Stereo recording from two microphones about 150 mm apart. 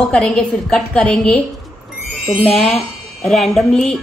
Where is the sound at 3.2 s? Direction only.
Centre (ahead or behind).